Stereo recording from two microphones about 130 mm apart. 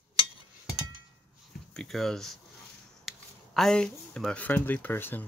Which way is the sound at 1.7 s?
5° left (ahead or behind).